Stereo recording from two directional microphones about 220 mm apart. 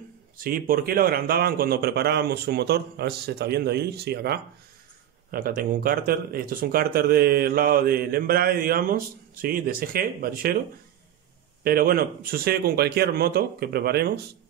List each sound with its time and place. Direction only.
0.4 s speech: 40° right (ahead or behind)
11.6 s speech: 40° right (ahead or behind)